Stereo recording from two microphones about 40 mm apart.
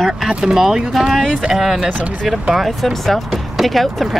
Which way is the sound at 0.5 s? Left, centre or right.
Centre.